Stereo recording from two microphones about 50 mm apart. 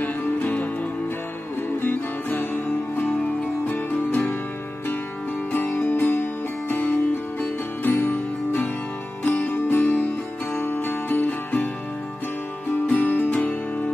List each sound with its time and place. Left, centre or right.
0.0 s music: left
1.8 s music: left
3.6 s music: left
5.5 s music: left
6.7 s music: left
7.4 s music: left
12.8 s music: left
13.3 s music: left